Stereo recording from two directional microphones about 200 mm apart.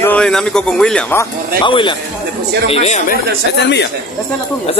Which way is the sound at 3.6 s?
60° left (ahead or behind).